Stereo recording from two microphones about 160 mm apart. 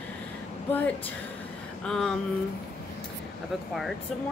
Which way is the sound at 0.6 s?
10° left (ahead or behind).